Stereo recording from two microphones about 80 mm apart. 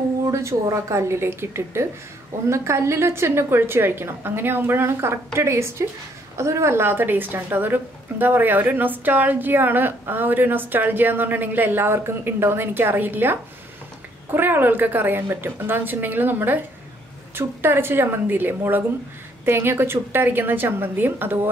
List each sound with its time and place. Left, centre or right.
0.3 s a woman's voice: right